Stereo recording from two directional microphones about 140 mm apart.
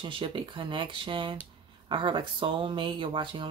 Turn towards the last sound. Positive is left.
turn(degrees=-35)  # may be behind; listen again after turning